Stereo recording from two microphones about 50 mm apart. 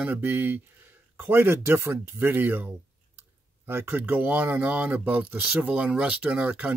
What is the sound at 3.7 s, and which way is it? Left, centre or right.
Speech, right.